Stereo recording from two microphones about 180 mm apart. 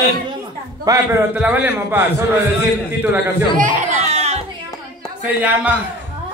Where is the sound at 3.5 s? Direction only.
45° right (ahead or behind).